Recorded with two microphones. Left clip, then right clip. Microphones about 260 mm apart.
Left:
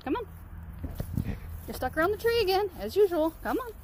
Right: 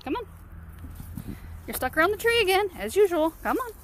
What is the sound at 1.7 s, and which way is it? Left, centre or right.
Speech, right.